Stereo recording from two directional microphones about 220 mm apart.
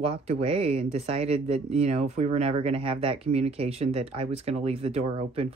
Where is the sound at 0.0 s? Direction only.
25° right (ahead or behind).